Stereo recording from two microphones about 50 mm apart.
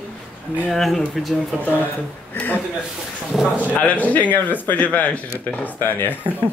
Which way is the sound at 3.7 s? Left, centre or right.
Left.